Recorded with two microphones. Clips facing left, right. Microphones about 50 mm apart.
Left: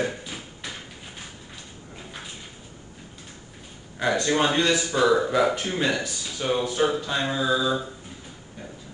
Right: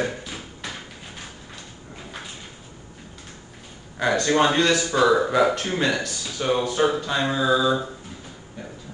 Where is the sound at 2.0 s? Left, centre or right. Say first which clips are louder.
Right 3 dB; right.